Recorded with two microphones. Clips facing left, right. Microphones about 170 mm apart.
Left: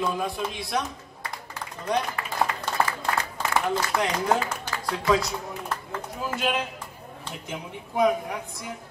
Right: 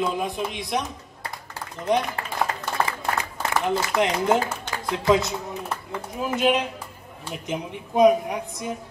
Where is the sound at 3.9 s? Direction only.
20° right (ahead or behind).